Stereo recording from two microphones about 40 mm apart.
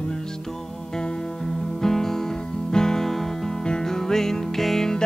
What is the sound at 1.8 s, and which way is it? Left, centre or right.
Music, centre.